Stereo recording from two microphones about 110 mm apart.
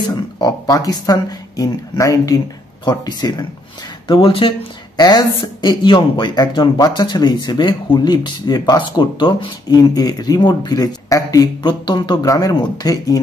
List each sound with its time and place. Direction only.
0.1 s speech: 35° left (ahead or behind)
4.1 s speech: 55° left (ahead or behind)
4.9 s a woman's voice: 40° left (ahead or behind)